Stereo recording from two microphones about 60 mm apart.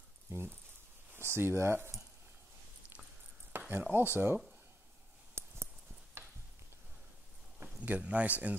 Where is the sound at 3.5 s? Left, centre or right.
Right.